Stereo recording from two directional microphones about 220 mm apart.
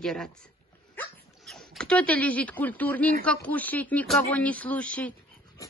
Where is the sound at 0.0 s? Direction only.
Centre (ahead or behind).